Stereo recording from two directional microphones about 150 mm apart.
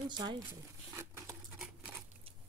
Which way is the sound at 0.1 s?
30° right (ahead or behind).